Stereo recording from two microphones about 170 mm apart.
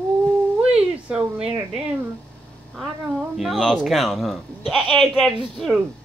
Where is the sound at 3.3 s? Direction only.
Centre (ahead or behind).